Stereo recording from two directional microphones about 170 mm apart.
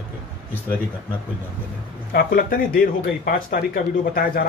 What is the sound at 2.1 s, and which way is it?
A man's voice, 60° left (ahead or behind).